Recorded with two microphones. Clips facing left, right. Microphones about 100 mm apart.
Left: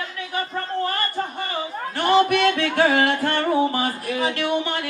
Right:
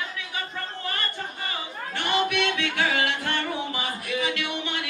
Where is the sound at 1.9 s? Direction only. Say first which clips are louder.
Left 8 dB; 40° left (ahead or behind).